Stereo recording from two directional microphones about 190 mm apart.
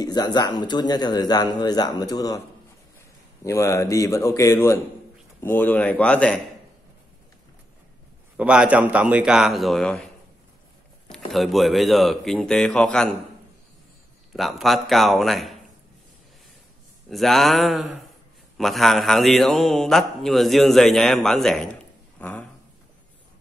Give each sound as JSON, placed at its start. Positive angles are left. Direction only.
{"t": 0.0, "sound": "speech", "side_deg": 20}
{"t": 3.4, "sound": "speech", "side_deg": 15}
{"t": 8.4, "sound": "a man's voice", "side_deg": -5}
{"t": 11.1, "sound": "a man's voice", "side_deg": 0}
{"t": 14.3, "sound": "a man's voice", "side_deg": 0}
{"t": 17.1, "sound": "a man's voice", "side_deg": 0}
{"t": 22.2, "sound": "a sound", "side_deg": 5}